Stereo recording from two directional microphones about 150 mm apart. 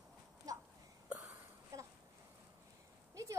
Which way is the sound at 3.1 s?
20° right (ahead or behind).